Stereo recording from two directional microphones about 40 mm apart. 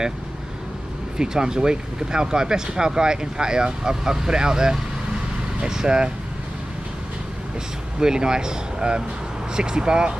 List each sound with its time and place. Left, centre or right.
1.1 s speech: centre
8.0 s speech: centre